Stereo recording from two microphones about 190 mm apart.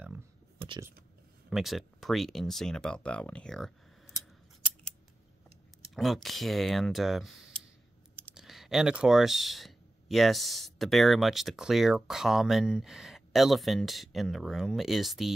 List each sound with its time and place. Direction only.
0.7 s speech: 15° right (ahead or behind)
1.5 s speech: centre (ahead or behind)
5.9 s speech: centre (ahead or behind)